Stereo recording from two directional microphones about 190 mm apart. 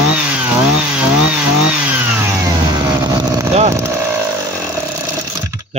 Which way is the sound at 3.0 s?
20° right (ahead or behind).